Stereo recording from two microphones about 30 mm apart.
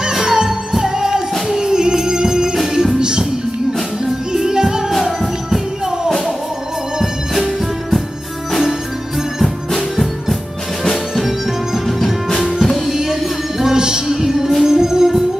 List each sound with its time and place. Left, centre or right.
0.1 s music: centre
3.0 s music: right
9.7 s music: centre
11.1 s music: centre
12.9 s music: centre